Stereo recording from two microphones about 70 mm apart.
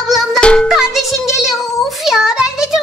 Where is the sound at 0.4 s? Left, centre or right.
Centre.